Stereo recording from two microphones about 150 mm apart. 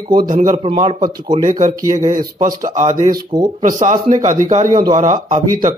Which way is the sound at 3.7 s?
55° right (ahead or behind).